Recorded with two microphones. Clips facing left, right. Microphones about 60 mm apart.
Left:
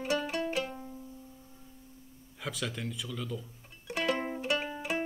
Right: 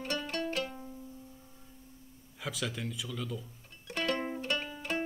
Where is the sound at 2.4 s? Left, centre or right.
Centre.